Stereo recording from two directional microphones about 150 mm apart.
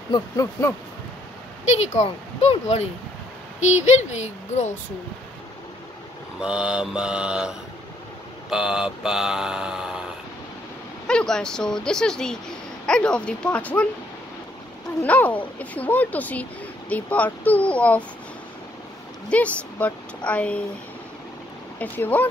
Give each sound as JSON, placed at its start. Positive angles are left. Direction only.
{"t": 0.1, "sound": "a sound", "side_deg": 20}
{"t": 1.7, "sound": "a child's voice", "side_deg": 45}
{"t": 6.4, "sound": "speech", "side_deg": -5}
{"t": 15.0, "sound": "speech", "side_deg": 10}
{"t": 19.2, "sound": "speech", "side_deg": 10}
{"t": 21.7, "sound": "speech", "side_deg": 10}